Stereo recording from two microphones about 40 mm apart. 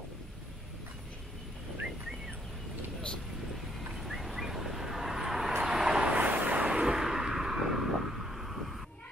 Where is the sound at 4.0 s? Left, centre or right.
Centre.